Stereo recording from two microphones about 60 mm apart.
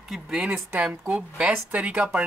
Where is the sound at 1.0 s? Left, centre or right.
Right.